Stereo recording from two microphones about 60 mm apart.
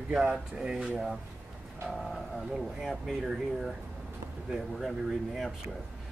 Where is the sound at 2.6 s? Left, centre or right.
Centre.